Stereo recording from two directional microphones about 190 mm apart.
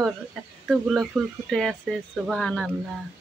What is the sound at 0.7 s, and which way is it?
Speech, centre (ahead or behind).